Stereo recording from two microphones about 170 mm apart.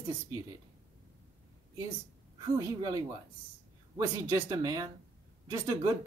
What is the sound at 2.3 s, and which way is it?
Speech, 20° right (ahead or behind).